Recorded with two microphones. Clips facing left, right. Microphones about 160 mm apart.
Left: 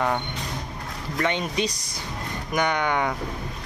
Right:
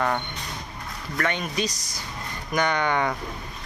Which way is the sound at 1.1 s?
20° left (ahead or behind).